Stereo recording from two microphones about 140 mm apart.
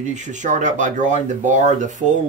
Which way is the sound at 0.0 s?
60° right (ahead or behind).